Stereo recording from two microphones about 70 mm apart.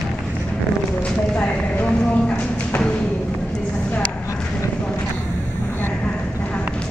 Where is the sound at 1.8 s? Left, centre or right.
Left.